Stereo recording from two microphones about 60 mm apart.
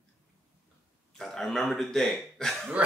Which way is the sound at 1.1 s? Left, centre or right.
Centre.